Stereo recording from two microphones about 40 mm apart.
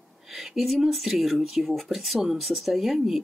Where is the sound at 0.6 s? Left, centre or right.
Centre.